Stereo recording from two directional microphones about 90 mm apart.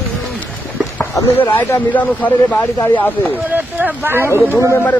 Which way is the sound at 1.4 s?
20° left (ahead or behind).